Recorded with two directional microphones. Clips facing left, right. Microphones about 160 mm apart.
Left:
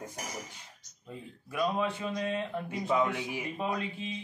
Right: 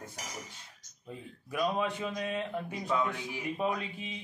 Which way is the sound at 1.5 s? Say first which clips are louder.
Left 1 dB; 15° right (ahead or behind).